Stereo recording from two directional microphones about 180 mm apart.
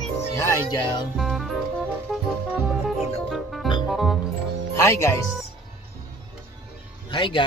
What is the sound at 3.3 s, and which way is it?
Music, centre (ahead or behind).